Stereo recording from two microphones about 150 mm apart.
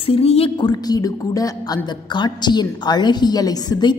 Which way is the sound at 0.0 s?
40° left (ahead or behind).